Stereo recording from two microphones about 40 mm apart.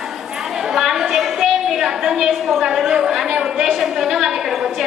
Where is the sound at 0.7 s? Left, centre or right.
Centre.